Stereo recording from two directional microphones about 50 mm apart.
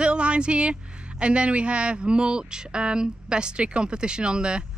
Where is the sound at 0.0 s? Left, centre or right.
Right.